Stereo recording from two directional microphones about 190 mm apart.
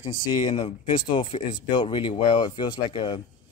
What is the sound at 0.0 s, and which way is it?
Speech, 25° left (ahead or behind).